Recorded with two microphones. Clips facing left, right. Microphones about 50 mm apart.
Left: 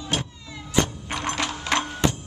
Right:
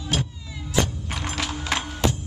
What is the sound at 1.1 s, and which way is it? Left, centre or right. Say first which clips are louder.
Music: left 3 dB; centre.